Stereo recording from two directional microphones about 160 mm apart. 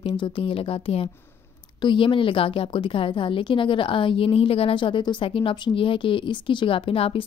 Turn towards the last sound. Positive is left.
turn(degrees=35)  # may be behind; listen again after turning